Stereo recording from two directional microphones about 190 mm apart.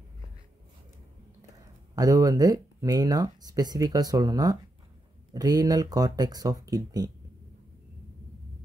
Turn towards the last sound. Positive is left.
turn(degrees=-20)  # may be behind; listen again after turning